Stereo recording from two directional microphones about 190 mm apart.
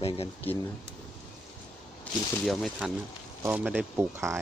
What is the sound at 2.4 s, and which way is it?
Speech, centre (ahead or behind).